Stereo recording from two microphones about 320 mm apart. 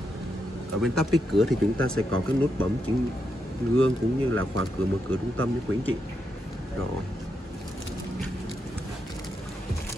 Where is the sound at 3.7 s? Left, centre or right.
Right.